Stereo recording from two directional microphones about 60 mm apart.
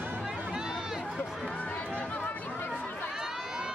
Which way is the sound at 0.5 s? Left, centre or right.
Centre.